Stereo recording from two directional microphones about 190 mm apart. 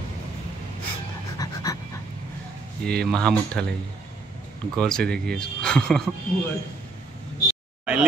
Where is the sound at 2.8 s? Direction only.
5° left (ahead or behind).